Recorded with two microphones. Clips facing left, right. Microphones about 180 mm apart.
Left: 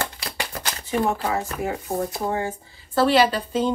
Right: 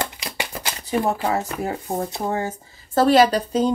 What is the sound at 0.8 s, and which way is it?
Speech, 40° right (ahead or behind).